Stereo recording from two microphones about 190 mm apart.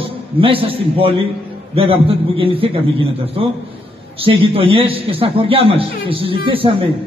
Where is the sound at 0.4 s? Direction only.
30° right (ahead or behind).